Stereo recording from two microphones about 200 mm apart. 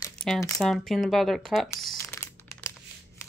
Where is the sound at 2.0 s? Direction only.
10° left (ahead or behind).